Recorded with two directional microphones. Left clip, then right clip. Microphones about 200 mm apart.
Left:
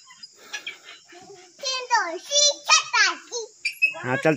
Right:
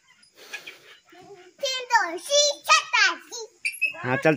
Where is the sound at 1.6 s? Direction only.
45° right (ahead or behind).